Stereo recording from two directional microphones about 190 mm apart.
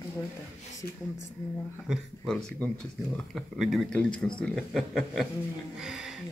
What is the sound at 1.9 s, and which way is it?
Speech, 5° left (ahead or behind).